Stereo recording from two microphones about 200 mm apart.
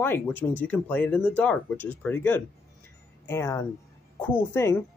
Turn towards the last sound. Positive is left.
turn(degrees=10)  # may be behind; listen again after turning